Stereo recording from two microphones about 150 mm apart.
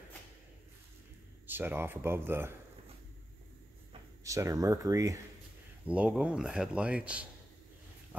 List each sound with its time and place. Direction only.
1.5 s speech: 15° right (ahead or behind)
4.2 s speech: 20° right (ahead or behind)
5.9 s speech: 5° right (ahead or behind)